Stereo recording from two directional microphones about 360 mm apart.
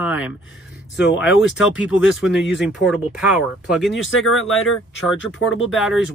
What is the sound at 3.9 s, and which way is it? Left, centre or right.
Speech, left.